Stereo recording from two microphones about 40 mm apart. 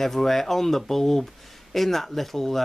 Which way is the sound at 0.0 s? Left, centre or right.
Centre.